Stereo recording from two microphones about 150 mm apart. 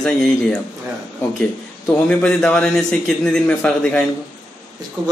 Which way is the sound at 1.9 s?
5° left (ahead or behind).